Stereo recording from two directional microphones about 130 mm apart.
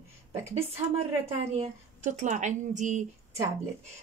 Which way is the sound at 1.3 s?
60° right (ahead or behind).